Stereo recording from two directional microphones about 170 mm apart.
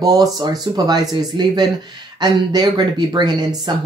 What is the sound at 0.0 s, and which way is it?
Speech, 25° right (ahead or behind).